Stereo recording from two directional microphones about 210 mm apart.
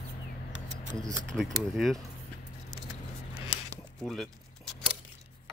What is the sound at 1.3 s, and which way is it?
Speech, centre (ahead or behind).